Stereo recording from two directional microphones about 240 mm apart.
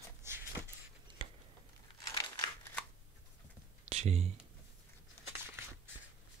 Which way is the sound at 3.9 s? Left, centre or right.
Right.